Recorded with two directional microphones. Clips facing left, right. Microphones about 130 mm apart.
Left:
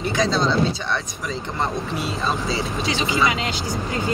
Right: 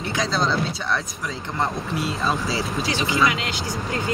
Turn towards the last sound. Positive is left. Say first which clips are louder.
# even
turn(degrees=25)  # may be behind; listen again after turning